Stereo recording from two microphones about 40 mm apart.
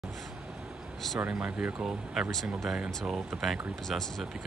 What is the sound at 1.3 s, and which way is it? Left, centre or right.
Speech, right.